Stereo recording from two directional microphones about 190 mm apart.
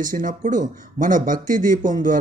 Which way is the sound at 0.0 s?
45° right (ahead or behind).